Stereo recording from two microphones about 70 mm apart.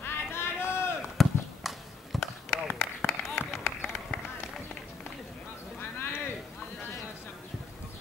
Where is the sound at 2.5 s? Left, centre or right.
Left.